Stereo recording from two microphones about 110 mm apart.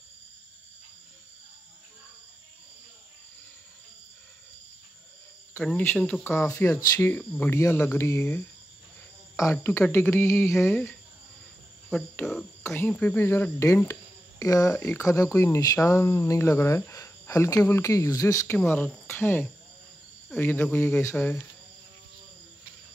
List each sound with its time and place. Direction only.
5.6 s speech: 15° left (ahead or behind)
6.6 s speech: 25° left (ahead or behind)
7.5 s speech: 25° left (ahead or behind)
12.2 s speech: centre (ahead or behind)
12.6 s speech: 20° left (ahead or behind)